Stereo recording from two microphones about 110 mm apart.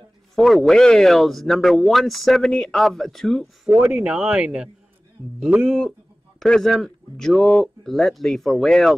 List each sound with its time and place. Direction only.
0.4 s speech: 5° left (ahead or behind)
3.6 s speech: 10° right (ahead or behind)